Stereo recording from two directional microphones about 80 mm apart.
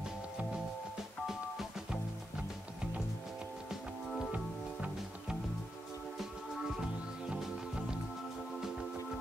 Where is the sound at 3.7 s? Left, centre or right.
Centre.